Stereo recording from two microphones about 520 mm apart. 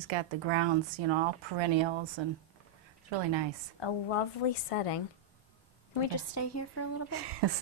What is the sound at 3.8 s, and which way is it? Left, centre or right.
Speech, left.